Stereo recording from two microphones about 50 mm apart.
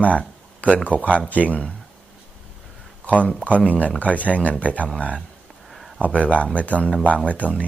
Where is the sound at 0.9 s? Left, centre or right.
Right.